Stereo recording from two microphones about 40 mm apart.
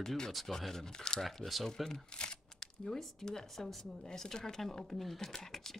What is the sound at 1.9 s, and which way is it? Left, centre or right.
Speech, centre.